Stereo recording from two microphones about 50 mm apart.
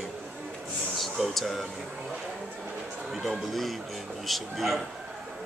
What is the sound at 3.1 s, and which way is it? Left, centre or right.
Speech, centre.